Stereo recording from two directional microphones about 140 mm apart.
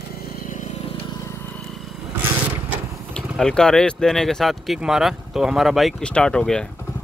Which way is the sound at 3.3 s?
5° left (ahead or behind).